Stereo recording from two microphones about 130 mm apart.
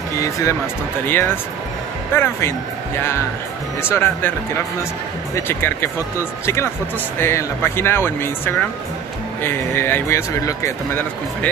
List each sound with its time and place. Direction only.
0.2 s speech: 25° left (ahead or behind)
3.8 s speech: 15° left (ahead or behind)
5.3 s speech: 15° left (ahead or behind)